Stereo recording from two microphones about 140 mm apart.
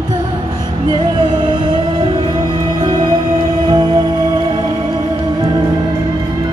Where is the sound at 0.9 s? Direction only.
35° right (ahead or behind).